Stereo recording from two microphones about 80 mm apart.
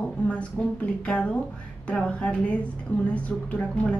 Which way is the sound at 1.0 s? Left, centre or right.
Centre.